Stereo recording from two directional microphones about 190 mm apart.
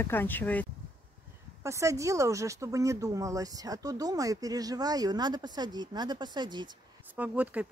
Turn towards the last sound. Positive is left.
turn(degrees=-5)  # may be behind; listen again after turning